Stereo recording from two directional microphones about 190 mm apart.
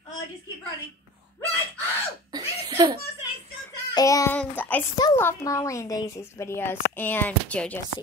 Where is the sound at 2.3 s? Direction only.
25° right (ahead or behind).